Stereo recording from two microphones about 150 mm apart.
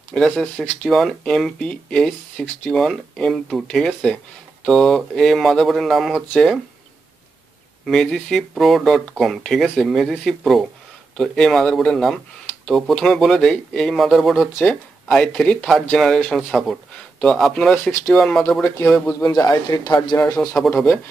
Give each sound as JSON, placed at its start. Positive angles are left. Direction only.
{"t": 0.1, "sound": "speech", "side_deg": 5}
{"t": 7.8, "sound": "speech", "side_deg": 0}
{"t": 18.6, "sound": "speech", "side_deg": 15}
{"t": 20.3, "sound": "speech", "side_deg": 5}